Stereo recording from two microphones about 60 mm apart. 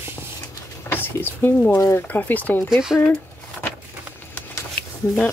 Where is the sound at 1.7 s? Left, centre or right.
Left.